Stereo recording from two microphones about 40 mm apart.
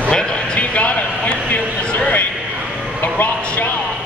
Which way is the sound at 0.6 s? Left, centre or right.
Left.